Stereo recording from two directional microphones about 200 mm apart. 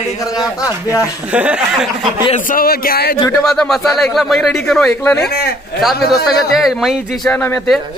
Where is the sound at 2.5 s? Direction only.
45° left (ahead or behind).